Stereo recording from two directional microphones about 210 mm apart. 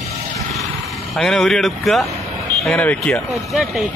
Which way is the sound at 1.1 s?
Centre (ahead or behind).